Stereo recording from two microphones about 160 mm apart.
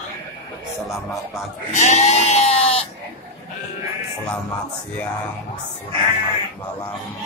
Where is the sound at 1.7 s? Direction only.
45° left (ahead or behind).